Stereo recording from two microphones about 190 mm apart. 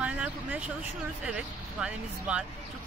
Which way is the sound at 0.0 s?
5° right (ahead or behind).